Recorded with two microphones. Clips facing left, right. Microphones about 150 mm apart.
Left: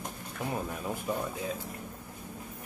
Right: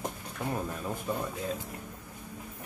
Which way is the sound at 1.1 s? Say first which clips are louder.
Even; 10° left (ahead or behind).